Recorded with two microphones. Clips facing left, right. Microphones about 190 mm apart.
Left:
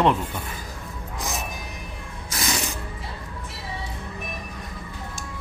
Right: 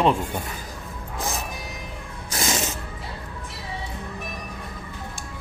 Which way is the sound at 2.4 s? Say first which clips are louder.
Right 2 dB; 25° right (ahead or behind).